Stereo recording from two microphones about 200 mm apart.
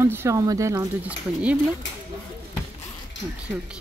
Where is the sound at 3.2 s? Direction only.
65° left (ahead or behind).